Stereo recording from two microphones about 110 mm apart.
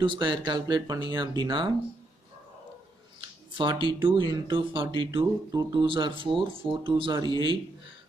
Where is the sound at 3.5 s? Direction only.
45° right (ahead or behind).